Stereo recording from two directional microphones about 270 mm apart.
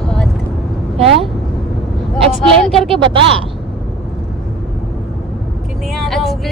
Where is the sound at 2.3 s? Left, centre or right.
Centre.